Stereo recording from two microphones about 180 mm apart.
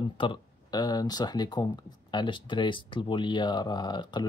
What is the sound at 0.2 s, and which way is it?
Speech, 25° left (ahead or behind).